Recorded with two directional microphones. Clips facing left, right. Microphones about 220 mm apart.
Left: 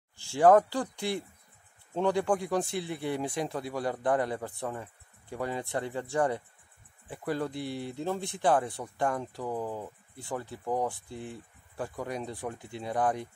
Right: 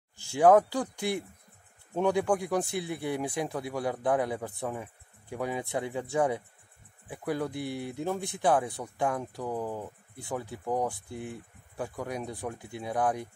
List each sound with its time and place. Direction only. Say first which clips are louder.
0.2 s a sound: even; 15° right (ahead or behind)
2.0 s speech: right 1 dB; 10° right (ahead or behind)
7.5 s speech: right 1 dB; 55° right (ahead or behind)
7.9 s speech: right 1 dB; 15° right (ahead or behind)
8.5 s speech: even; 5° right (ahead or behind)